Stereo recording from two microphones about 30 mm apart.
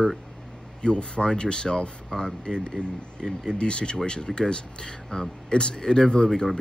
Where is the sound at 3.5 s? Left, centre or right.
Left.